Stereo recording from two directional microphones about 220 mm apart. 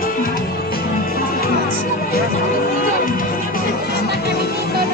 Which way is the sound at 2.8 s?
40° left (ahead or behind).